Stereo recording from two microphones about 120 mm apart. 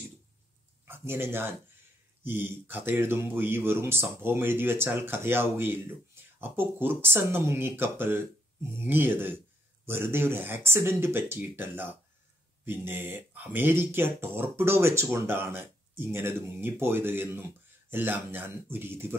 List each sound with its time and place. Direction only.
0.8 s speech: 20° right (ahead or behind)